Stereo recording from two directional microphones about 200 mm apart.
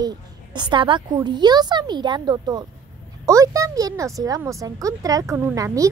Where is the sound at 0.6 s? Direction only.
25° right (ahead or behind).